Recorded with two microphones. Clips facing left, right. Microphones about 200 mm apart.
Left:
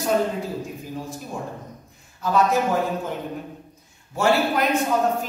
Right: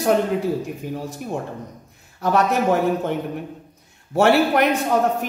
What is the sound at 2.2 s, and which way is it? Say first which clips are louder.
A man's voice: right 2 dB; 65° right (ahead or behind).